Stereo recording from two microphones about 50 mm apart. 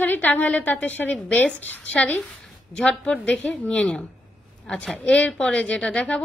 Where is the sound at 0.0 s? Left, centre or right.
Left; by 4.9 s centre.